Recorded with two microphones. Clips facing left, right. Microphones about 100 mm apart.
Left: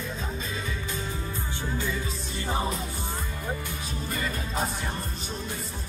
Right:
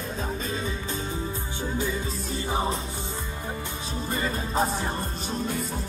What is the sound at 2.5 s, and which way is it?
Music, 25° right (ahead or behind).